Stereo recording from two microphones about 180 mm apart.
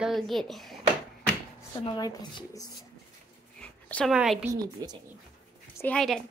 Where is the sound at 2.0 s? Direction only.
20° left (ahead or behind).